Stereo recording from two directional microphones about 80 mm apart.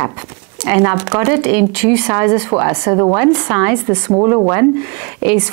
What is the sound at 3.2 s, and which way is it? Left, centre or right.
Speech, centre.